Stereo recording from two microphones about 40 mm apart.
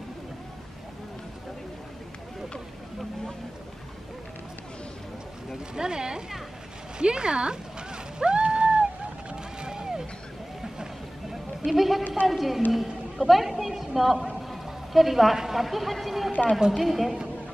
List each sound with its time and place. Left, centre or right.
5.8 s speech: centre
7.0 s a sound: right
9.3 s vehicle: right
11.6 s a woman's voice: centre